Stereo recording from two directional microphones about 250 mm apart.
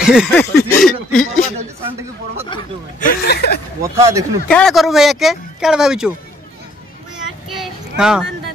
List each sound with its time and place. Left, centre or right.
0.0 s a sound: centre
0.3 s a sound: centre
2.5 s speech: centre
3.0 s speech: left
3.8 s speech: centre
4.5 s speech: centre
7.5 s child singing: centre